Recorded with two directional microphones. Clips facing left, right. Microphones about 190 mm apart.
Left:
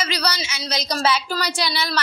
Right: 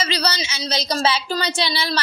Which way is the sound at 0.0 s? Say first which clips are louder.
Right 1 dB; 25° right (ahead or behind).